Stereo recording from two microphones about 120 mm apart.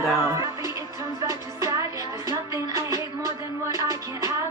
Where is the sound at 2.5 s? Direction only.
25° right (ahead or behind).